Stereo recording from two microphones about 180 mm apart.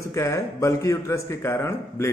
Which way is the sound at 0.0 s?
15° left (ahead or behind).